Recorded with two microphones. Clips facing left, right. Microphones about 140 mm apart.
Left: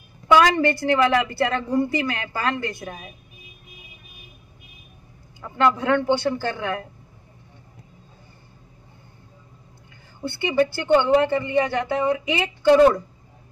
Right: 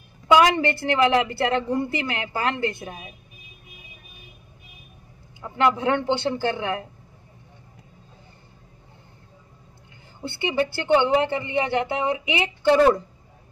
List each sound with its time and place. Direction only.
0.3 s speech: 20° right (ahead or behind)
5.4 s speech: 20° right (ahead or behind)
11.0 s speech: 20° right (ahead or behind)
12.6 s a woman's voice: 15° left (ahead or behind)